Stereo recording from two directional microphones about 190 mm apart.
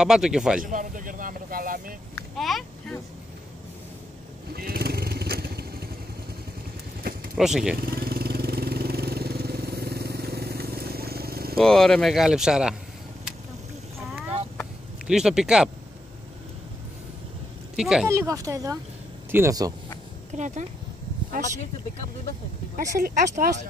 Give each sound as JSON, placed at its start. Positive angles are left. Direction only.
{"t": 0.0, "sound": "speech", "side_deg": -5}
{"t": 0.6, "sound": "speech", "side_deg": -45}
{"t": 2.3, "sound": "speech", "side_deg": 0}
{"t": 4.5, "sound": "vehicle", "side_deg": -55}
{"t": 7.3, "sound": "speech", "side_deg": -5}
{"t": 7.7, "sound": "vehicle", "side_deg": -50}
{"t": 11.5, "sound": "speech", "side_deg": 5}
{"t": 15.0, "sound": "speech", "side_deg": -5}
{"t": 17.7, "sound": "speech", "side_deg": 0}
{"t": 18.0, "sound": "speech", "side_deg": -15}
{"t": 20.3, "sound": "speech", "side_deg": -40}
{"t": 22.8, "sound": "speech", "side_deg": -40}